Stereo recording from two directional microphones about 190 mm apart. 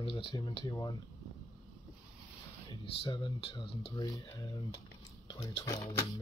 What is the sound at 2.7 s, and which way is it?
Speech, 25° left (ahead or behind).